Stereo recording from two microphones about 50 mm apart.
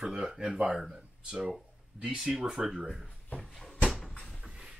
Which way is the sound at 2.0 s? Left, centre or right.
Centre.